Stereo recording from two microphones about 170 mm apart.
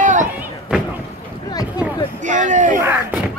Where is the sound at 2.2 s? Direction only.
50° right (ahead or behind).